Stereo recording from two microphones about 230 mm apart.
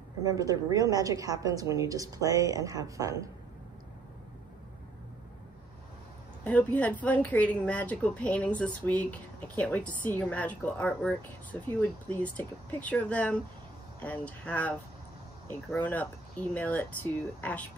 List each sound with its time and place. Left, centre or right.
0.2 s a woman's voice: centre
6.4 s speech: centre
15.7 s speech: centre